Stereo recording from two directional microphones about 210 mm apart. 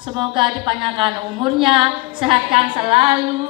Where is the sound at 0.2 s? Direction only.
25° right (ahead or behind).